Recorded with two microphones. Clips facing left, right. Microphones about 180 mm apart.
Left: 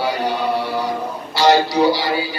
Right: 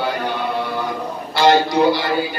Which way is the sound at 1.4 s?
55° right (ahead or behind).